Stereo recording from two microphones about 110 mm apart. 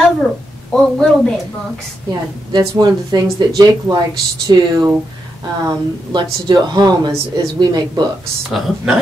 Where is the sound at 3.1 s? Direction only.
40° right (ahead or behind).